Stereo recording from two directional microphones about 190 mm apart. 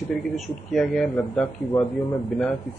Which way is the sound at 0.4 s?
Centre (ahead or behind).